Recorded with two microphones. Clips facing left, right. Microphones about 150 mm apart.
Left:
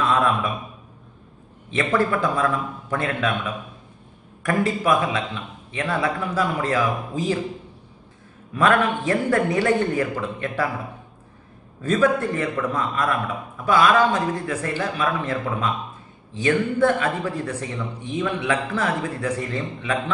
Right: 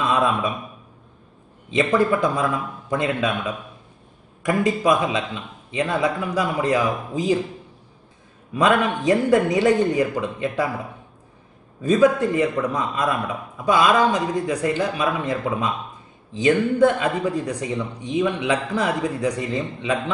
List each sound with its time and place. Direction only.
0.0 s a sound: 15° right (ahead or behind)
1.7 s a man's voice: 15° right (ahead or behind)
4.4 s a man's voice: 15° right (ahead or behind)
8.5 s a man's voice: 15° right (ahead or behind)
11.8 s a man's voice: 15° right (ahead or behind)